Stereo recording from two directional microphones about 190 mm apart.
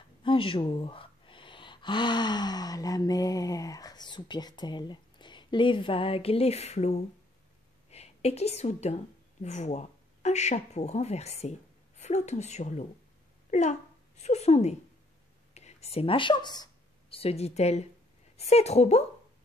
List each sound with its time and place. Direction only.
0.2 s a woman's voice: 25° left (ahead or behind)